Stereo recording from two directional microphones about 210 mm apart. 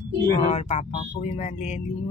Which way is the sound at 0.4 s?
30° left (ahead or behind).